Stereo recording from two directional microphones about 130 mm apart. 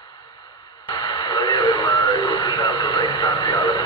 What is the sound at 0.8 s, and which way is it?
Radio, 35° left (ahead or behind).